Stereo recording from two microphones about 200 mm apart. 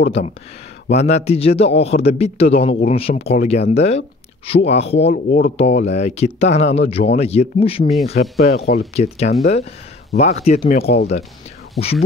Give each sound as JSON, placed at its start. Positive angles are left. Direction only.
{"t": 0.9, "sound": "speech", "side_deg": 35}
{"t": 5.1, "sound": "speech", "side_deg": 50}
{"t": 5.8, "sound": "speech", "side_deg": 35}
{"t": 10.8, "sound": "speech", "side_deg": 50}
{"t": 11.8, "sound": "speech", "side_deg": 0}